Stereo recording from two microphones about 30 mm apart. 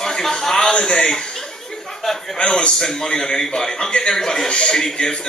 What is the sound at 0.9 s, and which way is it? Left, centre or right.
Speech, centre.